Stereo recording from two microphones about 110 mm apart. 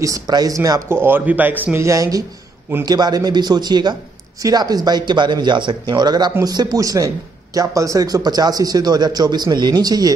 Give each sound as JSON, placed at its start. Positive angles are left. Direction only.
{"t": 0.0, "sound": "a man's voice", "side_deg": -35}
{"t": 0.9, "sound": "a man's voice", "side_deg": -20}
{"t": 1.9, "sound": "a man's voice", "side_deg": -30}